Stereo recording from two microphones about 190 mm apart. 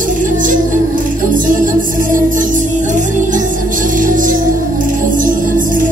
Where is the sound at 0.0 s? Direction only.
45° right (ahead or behind).